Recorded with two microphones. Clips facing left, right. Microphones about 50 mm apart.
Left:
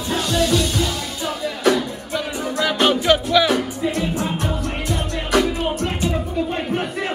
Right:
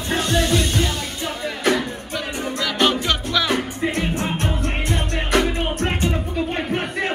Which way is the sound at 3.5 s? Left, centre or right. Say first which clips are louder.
Left 1 dB; right.